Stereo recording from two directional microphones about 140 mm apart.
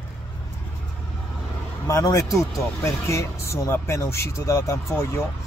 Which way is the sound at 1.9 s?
25° left (ahead or behind).